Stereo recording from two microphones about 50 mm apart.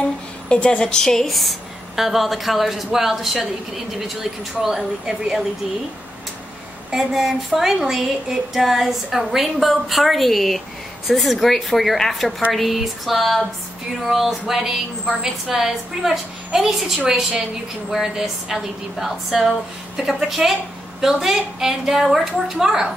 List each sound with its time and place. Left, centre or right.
0.5 s a woman's voice: left
1.2 s a woman's voice: centre
6.9 s a woman's voice: centre